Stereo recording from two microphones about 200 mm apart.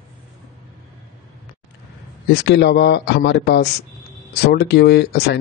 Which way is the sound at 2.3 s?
60° left (ahead or behind).